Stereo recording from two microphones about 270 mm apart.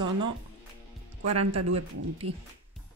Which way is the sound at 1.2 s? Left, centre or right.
Right.